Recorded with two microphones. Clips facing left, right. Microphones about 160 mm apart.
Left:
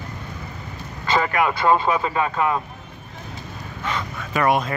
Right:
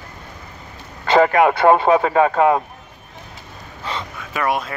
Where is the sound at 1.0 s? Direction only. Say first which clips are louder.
Right 8 dB; 70° right (ahead or behind).